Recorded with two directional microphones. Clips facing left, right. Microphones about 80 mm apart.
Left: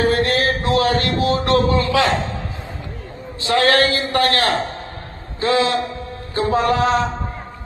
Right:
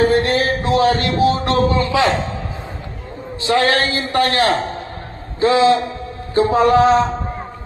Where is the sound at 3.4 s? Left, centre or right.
Right.